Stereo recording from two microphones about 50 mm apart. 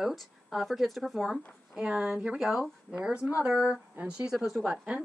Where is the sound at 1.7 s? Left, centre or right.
Right.